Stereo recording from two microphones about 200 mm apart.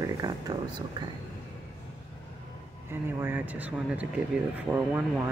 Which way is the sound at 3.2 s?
10° right (ahead or behind).